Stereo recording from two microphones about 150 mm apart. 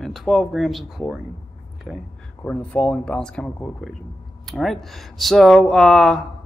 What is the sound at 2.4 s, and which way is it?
Speech, 5° left (ahead or behind).